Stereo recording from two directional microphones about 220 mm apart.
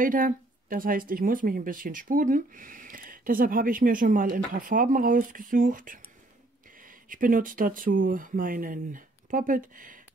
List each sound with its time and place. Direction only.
0.0 s speech: 40° right (ahead or behind)